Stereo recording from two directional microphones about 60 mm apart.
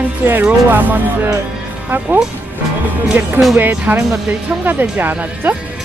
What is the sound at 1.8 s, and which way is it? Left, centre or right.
Speech, right.